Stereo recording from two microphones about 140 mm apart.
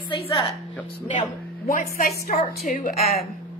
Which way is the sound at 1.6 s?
80° left.